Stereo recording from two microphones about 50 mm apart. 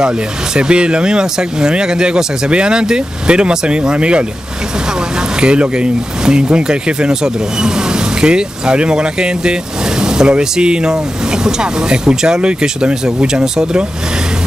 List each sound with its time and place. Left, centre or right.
0.6 s speech: centre
5.4 s speech: right